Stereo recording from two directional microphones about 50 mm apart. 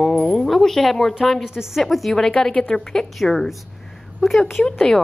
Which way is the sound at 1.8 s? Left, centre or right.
Centre.